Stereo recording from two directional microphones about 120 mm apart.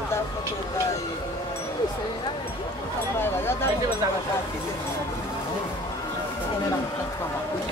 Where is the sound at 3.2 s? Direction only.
20° left (ahead or behind).